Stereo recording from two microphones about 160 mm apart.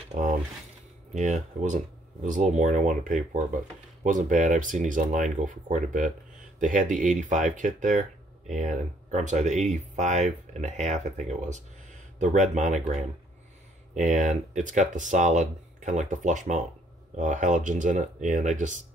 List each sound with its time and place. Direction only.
0.1 s mechanisms: 55° right (ahead or behind)
1.1 s speech: 50° right (ahead or behind)